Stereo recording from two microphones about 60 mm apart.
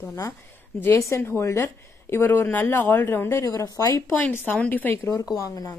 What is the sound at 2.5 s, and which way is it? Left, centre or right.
Speech, left.